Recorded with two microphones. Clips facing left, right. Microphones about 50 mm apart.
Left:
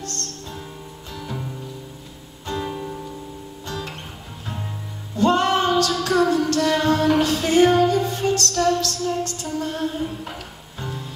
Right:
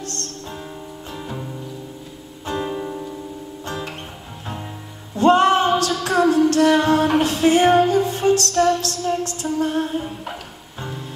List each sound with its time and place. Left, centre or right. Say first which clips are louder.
0.1 s music: right 2 dB; right
2.4 s music: right 3 dB; right
5.1 s female singing: right 4 dB; right
6.0 s music: right 6 dB; right